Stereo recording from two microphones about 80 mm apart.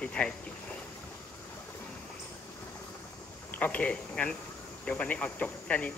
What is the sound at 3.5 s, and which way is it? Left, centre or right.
Speech, centre.